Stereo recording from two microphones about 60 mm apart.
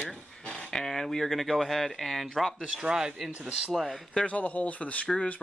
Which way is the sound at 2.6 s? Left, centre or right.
Centre.